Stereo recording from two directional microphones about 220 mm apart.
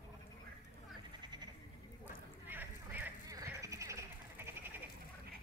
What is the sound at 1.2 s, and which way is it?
Frog, 20° right (ahead or behind).